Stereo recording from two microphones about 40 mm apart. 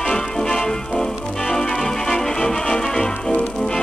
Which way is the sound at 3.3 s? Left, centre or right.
Left.